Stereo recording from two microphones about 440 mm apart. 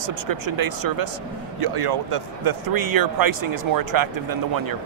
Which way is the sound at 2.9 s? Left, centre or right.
Right.